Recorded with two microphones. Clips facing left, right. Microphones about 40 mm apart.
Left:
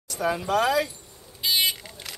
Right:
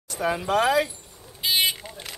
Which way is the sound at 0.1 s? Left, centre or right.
Centre.